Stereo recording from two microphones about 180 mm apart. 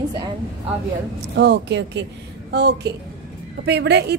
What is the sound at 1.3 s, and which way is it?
A woman's voice, 70° right (ahead or behind).